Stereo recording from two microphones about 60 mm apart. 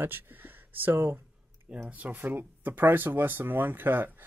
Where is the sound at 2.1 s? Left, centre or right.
Right.